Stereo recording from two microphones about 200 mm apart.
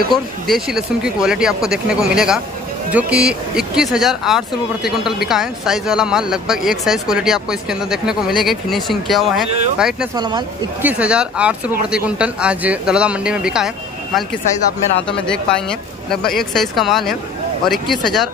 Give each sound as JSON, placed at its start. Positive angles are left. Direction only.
{"t": 0.1, "sound": "speech", "side_deg": 0}
{"t": 10.1, "sound": "speech", "side_deg": -20}
{"t": 10.8, "sound": "speech", "side_deg": -5}
{"t": 15.0, "sound": "speech", "side_deg": 5}